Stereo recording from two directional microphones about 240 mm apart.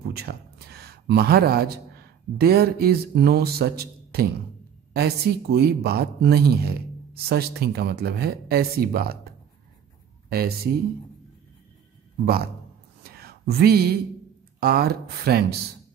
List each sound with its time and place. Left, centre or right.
0.1 s speech: right
10.3 s speech: right
13.0 s a sound: right
14.6 s speech: right